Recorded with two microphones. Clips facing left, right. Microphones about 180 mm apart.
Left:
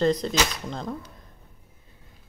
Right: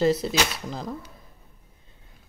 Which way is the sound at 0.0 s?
5° right (ahead or behind).